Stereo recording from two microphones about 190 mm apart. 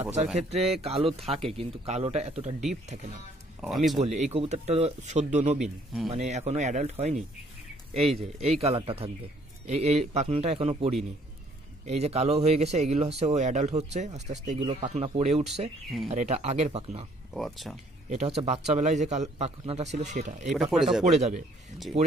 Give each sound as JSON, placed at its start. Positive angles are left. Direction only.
{"t": 0.4, "sound": "speech", "side_deg": -35}
{"t": 3.6, "sound": "speech", "side_deg": 0}
{"t": 4.0, "sound": "speech", "side_deg": -35}
{"t": 17.3, "sound": "speech", "side_deg": 0}
{"t": 18.1, "sound": "speech", "side_deg": -35}
{"t": 20.7, "sound": "speech", "side_deg": 0}
{"t": 21.0, "sound": "speech", "side_deg": -40}